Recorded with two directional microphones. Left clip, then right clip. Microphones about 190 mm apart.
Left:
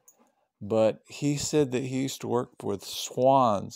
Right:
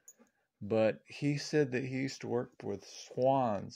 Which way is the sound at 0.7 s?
20° left (ahead or behind).